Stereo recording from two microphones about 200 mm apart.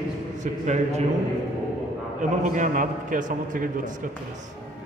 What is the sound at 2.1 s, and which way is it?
A man's voice, 40° right (ahead or behind).